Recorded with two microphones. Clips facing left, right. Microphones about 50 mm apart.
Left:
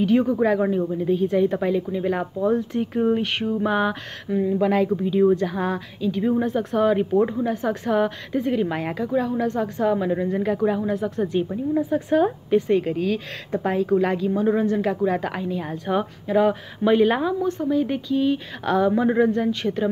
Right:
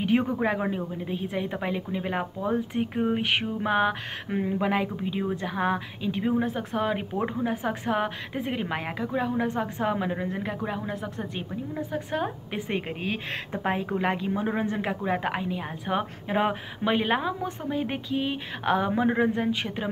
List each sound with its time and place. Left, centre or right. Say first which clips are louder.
0.0 s a woman's voice: left 5 dB; right
4.3 s speech: left 6 dB; right
4.6 s a woman's voice: left 7 dB; centre
6.3 s a woman's voice: left 5 dB; centre
7.0 s a woman's voice: left 8 dB; centre
12.4 s a woman's voice: left 11 dB; right
16.3 s a woman's voice: left 7 dB; right
16.8 s a woman's voice: left 7 dB; centre